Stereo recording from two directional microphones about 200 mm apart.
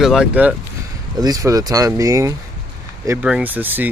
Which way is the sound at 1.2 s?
20° right (ahead or behind).